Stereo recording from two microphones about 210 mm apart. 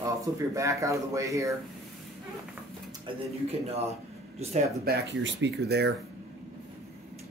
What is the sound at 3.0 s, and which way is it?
Speech, 30° right (ahead or behind).